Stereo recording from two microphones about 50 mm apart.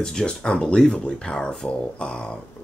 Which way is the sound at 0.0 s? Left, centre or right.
Centre.